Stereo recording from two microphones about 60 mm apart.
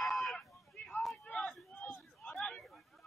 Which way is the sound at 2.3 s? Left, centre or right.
Centre.